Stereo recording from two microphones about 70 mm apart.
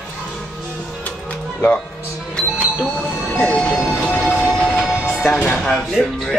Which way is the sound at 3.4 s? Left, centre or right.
Centre.